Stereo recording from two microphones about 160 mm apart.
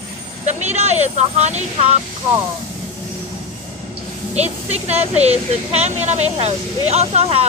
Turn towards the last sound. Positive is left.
turn(degrees=-40)  # may be behind; listen again after turning